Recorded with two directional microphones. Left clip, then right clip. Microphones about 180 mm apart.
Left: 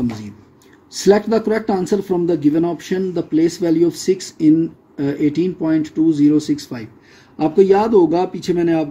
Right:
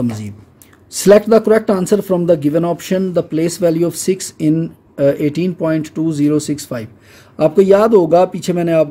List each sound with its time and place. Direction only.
0.9 s speech: 50° right (ahead or behind)